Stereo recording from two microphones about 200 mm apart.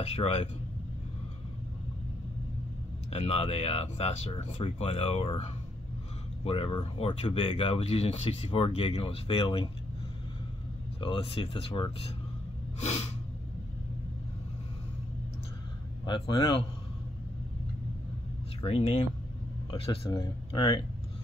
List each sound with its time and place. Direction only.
0.0 s speech: 30° left (ahead or behind)
3.1 s speech: 30° left (ahead or behind)
11.0 s speech: 25° left (ahead or behind)
16.1 s speech: 25° left (ahead or behind)
18.6 s speech: 30° left (ahead or behind)
20.1 s speech: 15° left (ahead or behind)